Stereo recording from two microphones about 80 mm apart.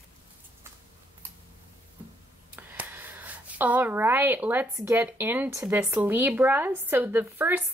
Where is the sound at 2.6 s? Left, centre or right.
Right.